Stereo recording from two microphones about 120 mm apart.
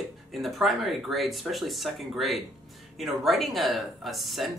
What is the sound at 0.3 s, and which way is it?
Speech, centre (ahead or behind).